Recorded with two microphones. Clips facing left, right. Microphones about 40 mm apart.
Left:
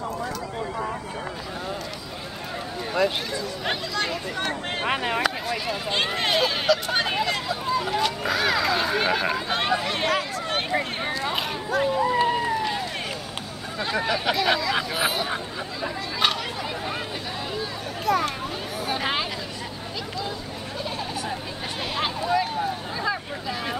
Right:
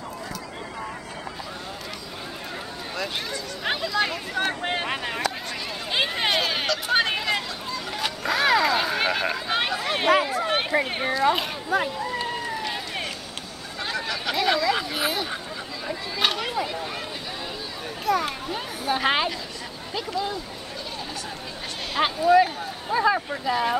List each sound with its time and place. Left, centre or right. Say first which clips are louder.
2.9 s speech: left 7 dB; centre
3.6 s speech: right 4 dB; centre
4.8 s speech: left 4 dB; centre
5.9 s speech: right 1 dB; centre
7.4 s a sound: left 6 dB; centre
8.3 s speech: right 5 dB; centre
9.8 s a sound: right 4 dB; centre
11.9 s run: left 7 dB; centre
12.6 s run: left 2 dB; centre
13.9 s speech: left 3 dB; centre
16.2 s speech: right 1 dB; centre
18.0 s speech: left 1 dB; centre
22.0 s speech: right 7 dB; centre